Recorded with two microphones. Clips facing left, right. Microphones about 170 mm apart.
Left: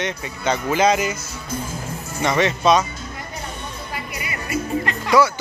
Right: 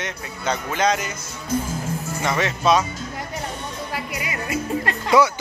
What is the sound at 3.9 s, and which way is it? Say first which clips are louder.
Music: right 1 dB; 90° right.